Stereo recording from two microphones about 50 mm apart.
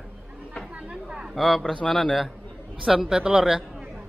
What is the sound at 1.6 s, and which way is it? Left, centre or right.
Speech, centre.